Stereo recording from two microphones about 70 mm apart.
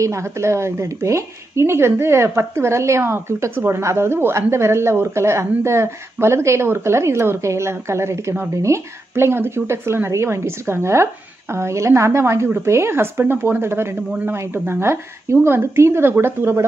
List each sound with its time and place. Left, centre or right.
0.0 s speech: right